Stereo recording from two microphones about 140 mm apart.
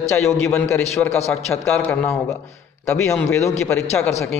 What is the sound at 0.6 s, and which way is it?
A man's voice, 15° left (ahead or behind).